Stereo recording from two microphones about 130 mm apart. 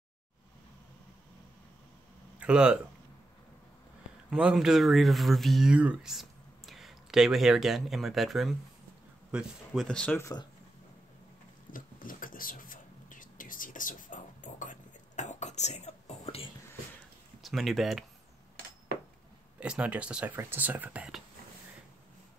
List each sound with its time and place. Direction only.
2.3 s speech: 10° right (ahead or behind)
4.3 s speech: 5° right (ahead or behind)
9.8 s speech: 5° left (ahead or behind)
11.7 s whispering: 90° left; by 16.4 s 55° left (ahead or behind)
17.4 s speech: centre (ahead or behind)
19.6 s speech: 5° right (ahead or behind)